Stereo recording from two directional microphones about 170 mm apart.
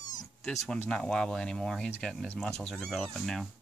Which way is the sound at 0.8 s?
5° left (ahead or behind).